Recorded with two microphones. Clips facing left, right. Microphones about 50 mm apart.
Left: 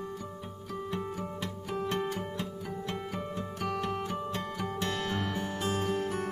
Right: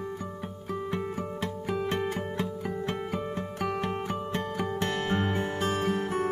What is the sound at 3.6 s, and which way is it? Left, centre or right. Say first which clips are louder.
Music: right 2 dB; right.